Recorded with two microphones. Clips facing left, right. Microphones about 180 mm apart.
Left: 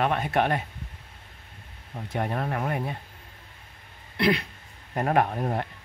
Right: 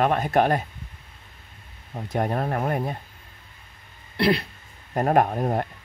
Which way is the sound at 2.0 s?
40° right (ahead or behind).